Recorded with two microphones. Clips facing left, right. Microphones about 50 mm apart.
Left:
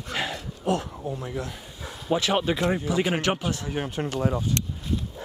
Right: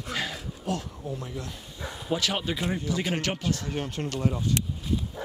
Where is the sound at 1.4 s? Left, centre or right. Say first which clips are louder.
Left 3 dB; centre.